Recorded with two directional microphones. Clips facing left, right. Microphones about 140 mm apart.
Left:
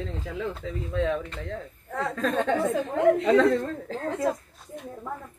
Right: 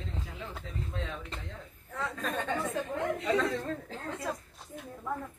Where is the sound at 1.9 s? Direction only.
70° left (ahead or behind).